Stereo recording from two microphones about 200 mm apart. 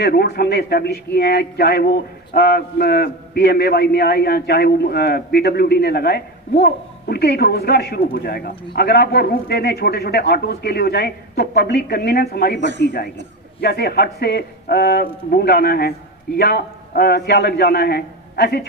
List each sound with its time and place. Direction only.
0.0 s a man's voice: 55° left (ahead or behind)